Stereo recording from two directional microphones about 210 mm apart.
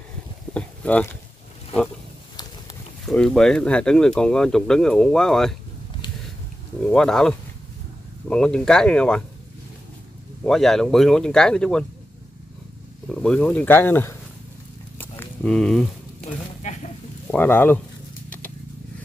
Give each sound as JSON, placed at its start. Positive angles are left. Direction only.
{"t": 0.6, "sound": "speech", "side_deg": 5}
{"t": 3.1, "sound": "speech", "side_deg": 0}
{"t": 6.9, "sound": "speech", "side_deg": 5}
{"t": 10.4, "sound": "speech", "side_deg": 0}
{"t": 13.1, "sound": "speech", "side_deg": 5}
{"t": 15.0, "sound": "a sound", "side_deg": 5}
{"t": 16.6, "sound": "sheep", "side_deg": 35}
{"t": 17.3, "sound": "speech", "side_deg": 10}